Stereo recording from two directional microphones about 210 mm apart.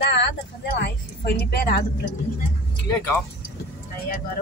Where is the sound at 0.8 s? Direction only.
50° left (ahead or behind).